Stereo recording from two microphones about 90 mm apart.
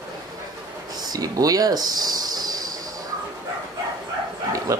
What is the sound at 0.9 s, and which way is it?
Speech, 45° right (ahead or behind).